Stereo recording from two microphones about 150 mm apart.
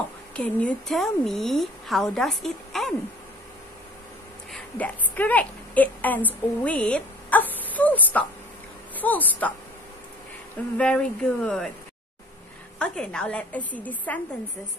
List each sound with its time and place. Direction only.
0.4 s a woman's voice: 10° left (ahead or behind)
4.5 s a woman's voice: 5° left (ahead or behind)
10.8 s a woman's voice: 5° left (ahead or behind)
12.7 s a woman's voice: 5° left (ahead or behind)